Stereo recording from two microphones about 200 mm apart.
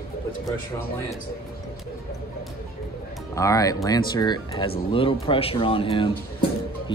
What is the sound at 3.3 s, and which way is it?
Speech, 15° left (ahead or behind).